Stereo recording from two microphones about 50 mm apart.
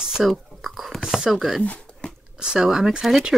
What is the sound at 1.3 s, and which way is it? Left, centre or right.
Speech, centre.